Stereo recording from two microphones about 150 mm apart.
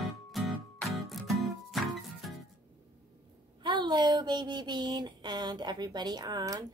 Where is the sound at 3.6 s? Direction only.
30° right (ahead or behind).